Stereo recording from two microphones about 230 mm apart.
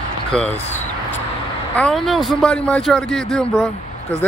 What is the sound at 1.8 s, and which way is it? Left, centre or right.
A man's voice, centre.